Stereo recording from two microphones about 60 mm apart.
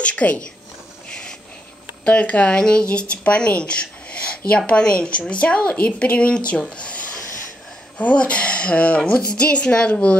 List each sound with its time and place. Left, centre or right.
0.0 s speech: left
2.0 s speech: left
8.0 s speech: left